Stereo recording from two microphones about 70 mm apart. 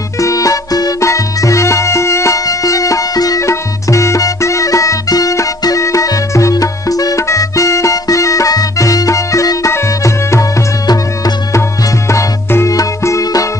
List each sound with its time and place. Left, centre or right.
0.2 s music: left
1.0 s music: left
3.4 s music: left
12.1 s music: left